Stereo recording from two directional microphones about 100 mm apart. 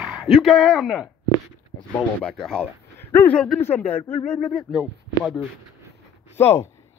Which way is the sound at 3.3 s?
5° left (ahead or behind).